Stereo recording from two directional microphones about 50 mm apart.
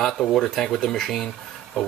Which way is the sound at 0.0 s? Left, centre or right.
Centre.